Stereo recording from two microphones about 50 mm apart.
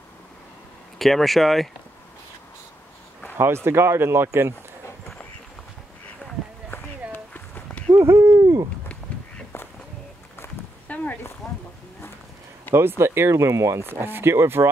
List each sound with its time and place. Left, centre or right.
0.9 s speech: centre
3.3 s speech: right
6.7 s run: left
7.3 s a sound: left
7.9 s hoot: right
10.9 s a sound: left
11.4 s a sound: centre
12.7 s speech: right
13.8 s speech: right